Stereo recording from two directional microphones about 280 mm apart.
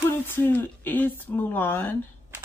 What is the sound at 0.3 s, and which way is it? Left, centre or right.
Speech, centre.